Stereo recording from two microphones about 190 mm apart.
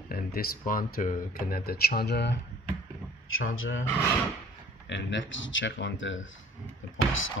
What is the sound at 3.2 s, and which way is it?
Speech, 90° left.